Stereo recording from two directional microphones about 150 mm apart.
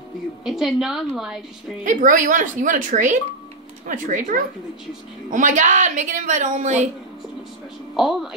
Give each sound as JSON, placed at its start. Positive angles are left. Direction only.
{"t": 0.5, "sound": "a woman's voice", "side_deg": 0}
{"t": 1.9, "sound": "a woman's voice", "side_deg": -60}
{"t": 7.9, "sound": "a woman's voice", "side_deg": 0}